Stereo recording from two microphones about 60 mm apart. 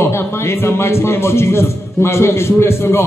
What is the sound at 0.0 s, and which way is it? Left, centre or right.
A man's voice, left.